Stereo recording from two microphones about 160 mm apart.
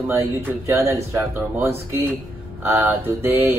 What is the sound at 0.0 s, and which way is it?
Speech, 10° right (ahead or behind).